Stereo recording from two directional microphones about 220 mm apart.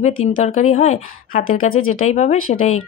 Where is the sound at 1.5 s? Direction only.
70° left (ahead or behind).